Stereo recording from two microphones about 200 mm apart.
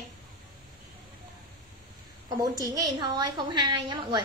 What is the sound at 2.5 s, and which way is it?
A woman's voice, 20° right (ahead or behind).